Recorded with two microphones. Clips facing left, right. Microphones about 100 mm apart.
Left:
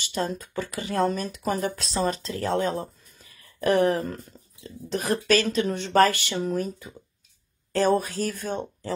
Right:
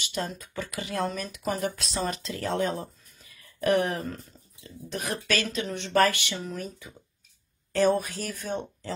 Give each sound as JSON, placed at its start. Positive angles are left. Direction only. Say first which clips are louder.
{"t": 0.0, "sound": "speech", "louder": "left 4 dB", "side_deg": 40}
{"t": 2.8, "sound": "a sound", "louder": "left 3 dB", "side_deg": 40}
{"t": 4.6, "sound": "speech", "louder": "left 6 dB", "side_deg": 35}